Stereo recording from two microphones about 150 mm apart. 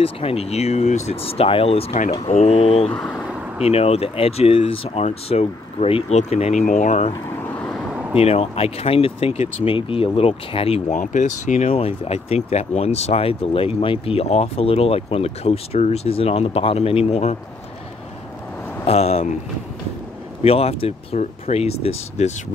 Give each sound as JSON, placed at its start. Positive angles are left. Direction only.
{"t": 0.0, "sound": "speech", "side_deg": 40}
{"t": 2.9, "sound": "speech", "side_deg": 5}
{"t": 3.6, "sound": "speech", "side_deg": 40}
{"t": 7.4, "sound": "vehicle", "side_deg": 10}
{"t": 8.2, "sound": "speech", "side_deg": 40}
{"t": 10.9, "sound": "speech", "side_deg": 55}
{"t": 18.9, "sound": "speech", "side_deg": 45}
{"t": 20.4, "sound": "speech", "side_deg": 40}